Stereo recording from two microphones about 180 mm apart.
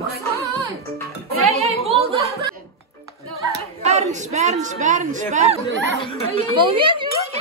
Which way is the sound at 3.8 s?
40° right (ahead or behind).